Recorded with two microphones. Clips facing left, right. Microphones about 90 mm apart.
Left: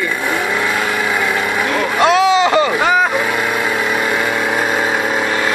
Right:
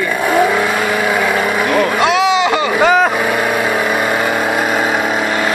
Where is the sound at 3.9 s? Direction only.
45° right (ahead or behind).